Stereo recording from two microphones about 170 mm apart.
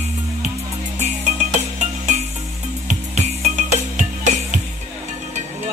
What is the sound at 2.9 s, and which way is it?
Music, 45° right (ahead or behind).